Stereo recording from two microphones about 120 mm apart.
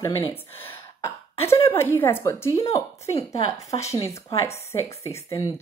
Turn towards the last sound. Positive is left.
turn(degrees=25)  # may be behind; listen again after turning